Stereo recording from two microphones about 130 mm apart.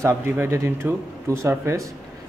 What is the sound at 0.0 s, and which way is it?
Speech, 20° right (ahead or behind).